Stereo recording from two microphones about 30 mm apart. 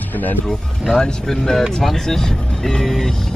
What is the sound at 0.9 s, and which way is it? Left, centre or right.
Speech, left.